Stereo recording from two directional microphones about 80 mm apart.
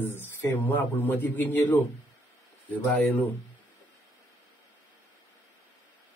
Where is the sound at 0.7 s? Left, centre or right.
Left.